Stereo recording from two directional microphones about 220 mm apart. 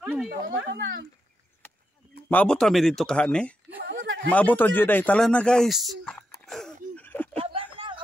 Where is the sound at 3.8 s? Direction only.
50° right (ahead or behind).